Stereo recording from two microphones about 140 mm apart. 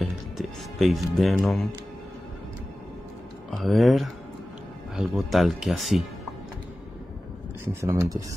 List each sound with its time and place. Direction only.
0.0 s music: centre (ahead or behind)
3.4 s speech: centre (ahead or behind)
7.8 s speech: 20° right (ahead or behind)